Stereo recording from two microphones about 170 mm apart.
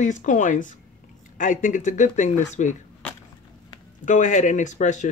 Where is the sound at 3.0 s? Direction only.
10° left (ahead or behind).